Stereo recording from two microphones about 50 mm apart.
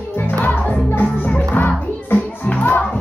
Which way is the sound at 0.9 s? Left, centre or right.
Left.